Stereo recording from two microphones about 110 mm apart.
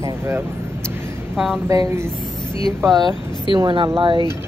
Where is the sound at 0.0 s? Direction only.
25° right (ahead or behind).